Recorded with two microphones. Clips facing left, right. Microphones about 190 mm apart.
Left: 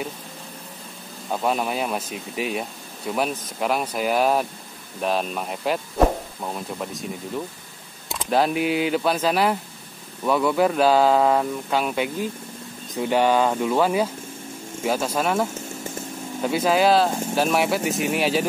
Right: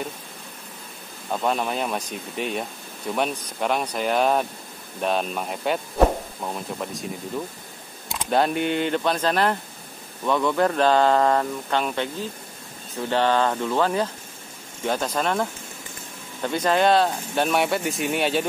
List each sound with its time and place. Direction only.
1.3 s speech: 5° left (ahead or behind)
8.1 s speech: centre (ahead or behind)
16.4 s speech: 5° left (ahead or behind)